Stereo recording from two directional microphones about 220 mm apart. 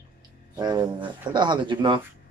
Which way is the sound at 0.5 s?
20° right (ahead or behind).